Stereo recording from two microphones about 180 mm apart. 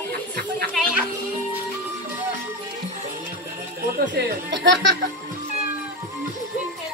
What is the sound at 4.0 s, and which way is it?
Speech, 70° right (ahead or behind).